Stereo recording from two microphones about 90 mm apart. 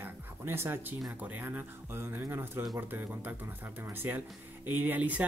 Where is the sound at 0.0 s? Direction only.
25° right (ahead or behind).